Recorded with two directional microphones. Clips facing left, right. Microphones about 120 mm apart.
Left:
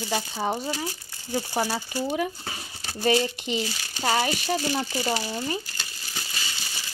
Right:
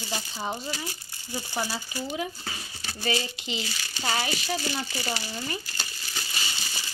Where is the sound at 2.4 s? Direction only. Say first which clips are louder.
Left 1 dB; 35° left (ahead or behind).